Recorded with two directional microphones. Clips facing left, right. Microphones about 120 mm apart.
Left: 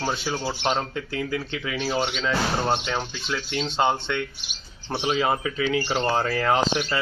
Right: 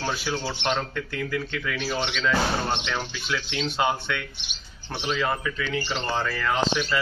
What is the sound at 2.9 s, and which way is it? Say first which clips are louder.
Speech: left 1 dB; 25° left (ahead or behind).